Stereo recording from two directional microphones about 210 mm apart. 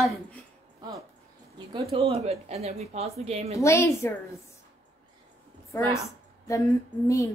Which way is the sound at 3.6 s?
15° left (ahead or behind).